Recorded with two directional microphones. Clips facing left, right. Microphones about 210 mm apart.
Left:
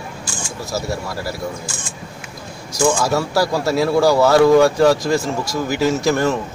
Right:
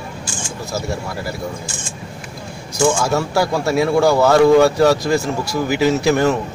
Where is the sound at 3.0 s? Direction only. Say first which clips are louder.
Even; centre (ahead or behind).